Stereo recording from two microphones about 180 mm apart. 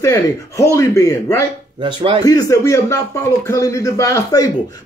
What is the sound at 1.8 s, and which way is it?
Speech, 25° right (ahead or behind).